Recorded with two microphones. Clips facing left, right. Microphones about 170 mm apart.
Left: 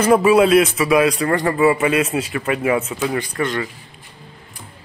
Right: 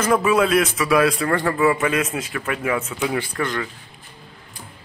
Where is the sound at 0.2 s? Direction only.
10° left (ahead or behind).